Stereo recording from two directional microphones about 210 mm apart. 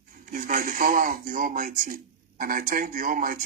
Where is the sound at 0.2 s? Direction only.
40° right (ahead or behind).